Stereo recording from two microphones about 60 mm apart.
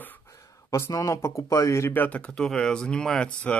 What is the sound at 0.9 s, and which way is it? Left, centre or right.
Speech, left.